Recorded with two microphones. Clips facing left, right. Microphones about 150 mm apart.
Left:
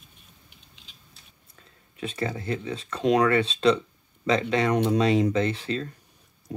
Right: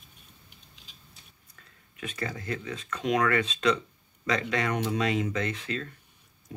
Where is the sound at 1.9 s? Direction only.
30° left (ahead or behind).